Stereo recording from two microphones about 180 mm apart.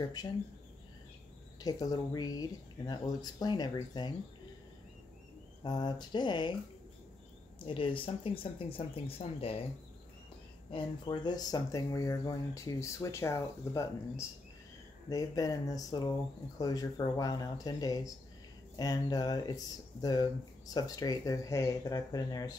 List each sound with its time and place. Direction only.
0.0 s speech: 20° left (ahead or behind)
1.6 s speech: 20° left (ahead or behind)
5.6 s speech: 25° left (ahead or behind)
7.5 s speech: 30° left (ahead or behind)
10.7 s speech: 25° left (ahead or behind)